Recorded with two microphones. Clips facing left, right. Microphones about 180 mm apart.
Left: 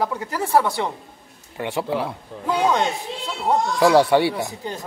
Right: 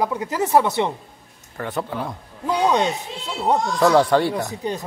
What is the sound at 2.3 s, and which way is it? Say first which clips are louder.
Speech: even; 90° left.